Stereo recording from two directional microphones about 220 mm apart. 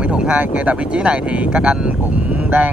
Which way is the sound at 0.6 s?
5° right (ahead or behind).